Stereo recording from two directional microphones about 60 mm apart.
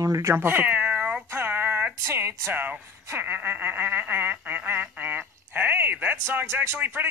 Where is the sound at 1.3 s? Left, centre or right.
Right.